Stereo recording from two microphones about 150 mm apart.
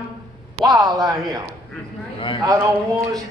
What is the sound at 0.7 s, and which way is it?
Speech, 25° right (ahead or behind).